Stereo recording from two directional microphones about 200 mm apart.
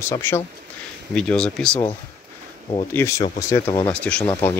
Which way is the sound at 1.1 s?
5° left (ahead or behind).